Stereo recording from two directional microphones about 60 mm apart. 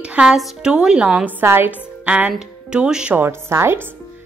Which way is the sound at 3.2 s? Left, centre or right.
Right.